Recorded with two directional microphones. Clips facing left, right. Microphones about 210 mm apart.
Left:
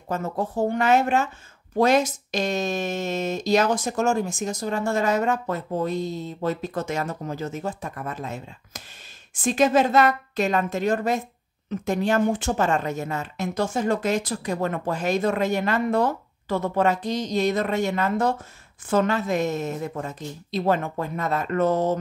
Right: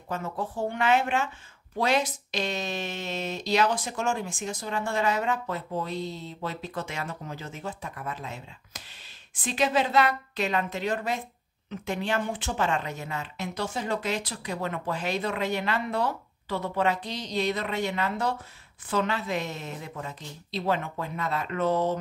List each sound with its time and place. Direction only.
0.1 s speech: 45° left (ahead or behind)